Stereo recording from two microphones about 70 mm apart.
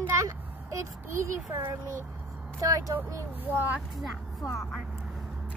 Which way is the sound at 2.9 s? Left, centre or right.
Right.